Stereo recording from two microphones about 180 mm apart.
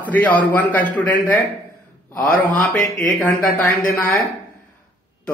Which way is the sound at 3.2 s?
15° left (ahead or behind).